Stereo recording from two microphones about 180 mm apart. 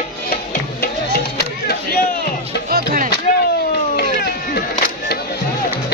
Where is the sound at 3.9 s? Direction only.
65° left (ahead or behind).